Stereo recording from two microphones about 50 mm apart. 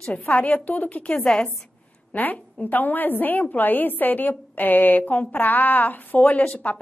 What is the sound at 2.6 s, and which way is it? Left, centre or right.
A woman's voice, left.